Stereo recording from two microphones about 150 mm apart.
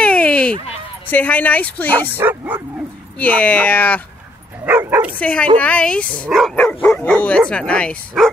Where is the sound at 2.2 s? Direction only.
15° right (ahead or behind).